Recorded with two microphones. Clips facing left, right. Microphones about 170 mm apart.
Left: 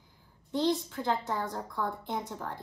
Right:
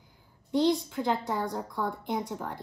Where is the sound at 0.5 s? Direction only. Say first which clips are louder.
Right 4 dB; 20° right (ahead or behind).